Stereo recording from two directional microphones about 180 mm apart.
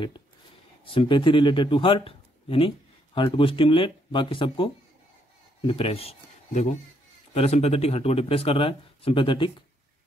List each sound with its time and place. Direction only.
0.8 s speech: 30° left (ahead or behind)
5.7 s speech: 30° left (ahead or behind)